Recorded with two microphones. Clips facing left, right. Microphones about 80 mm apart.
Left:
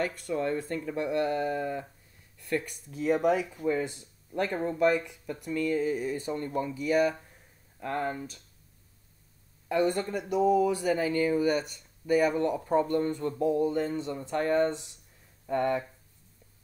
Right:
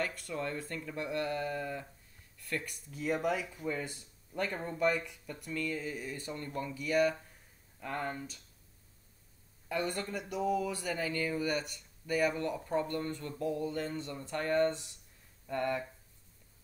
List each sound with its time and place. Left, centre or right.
0.3 s speech: centre
3.8 s speech: centre
4.5 s speech: left
4.7 s speech: centre
9.7 s speech: centre
10.4 s speech: centre
15.4 s speech: centre